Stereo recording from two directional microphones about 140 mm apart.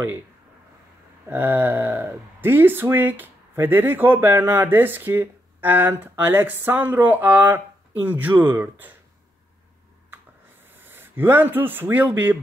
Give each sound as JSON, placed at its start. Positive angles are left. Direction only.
{"t": 1.2, "sound": "speech", "side_deg": -15}
{"t": 10.8, "sound": "speech", "side_deg": -15}